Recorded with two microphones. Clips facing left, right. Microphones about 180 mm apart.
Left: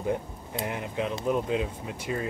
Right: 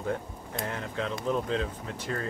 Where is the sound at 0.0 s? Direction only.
15° left (ahead or behind).